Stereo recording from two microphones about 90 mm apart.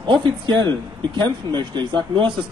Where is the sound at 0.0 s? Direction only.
60° right (ahead or behind).